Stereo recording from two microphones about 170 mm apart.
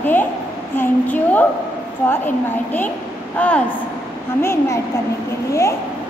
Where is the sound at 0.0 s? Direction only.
10° left (ahead or behind).